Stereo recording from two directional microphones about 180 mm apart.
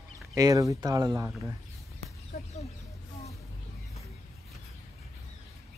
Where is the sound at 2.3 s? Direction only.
50° left (ahead or behind).